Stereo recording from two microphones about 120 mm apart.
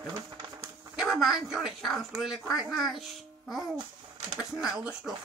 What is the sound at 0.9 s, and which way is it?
Speech, 5° right (ahead or behind).